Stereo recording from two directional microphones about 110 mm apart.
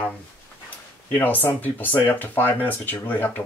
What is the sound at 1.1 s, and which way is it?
Speech, 15° left (ahead or behind).